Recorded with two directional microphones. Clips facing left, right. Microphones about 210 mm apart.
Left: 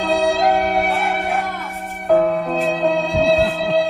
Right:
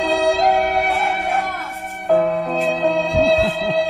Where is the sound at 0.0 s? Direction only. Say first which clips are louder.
Even; centre (ahead or behind).